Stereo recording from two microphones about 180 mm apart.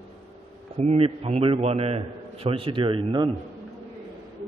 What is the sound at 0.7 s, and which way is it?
A man's voice, 35° right (ahead or behind).